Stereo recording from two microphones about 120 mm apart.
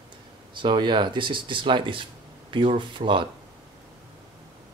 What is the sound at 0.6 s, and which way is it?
Speech, 40° right (ahead or behind).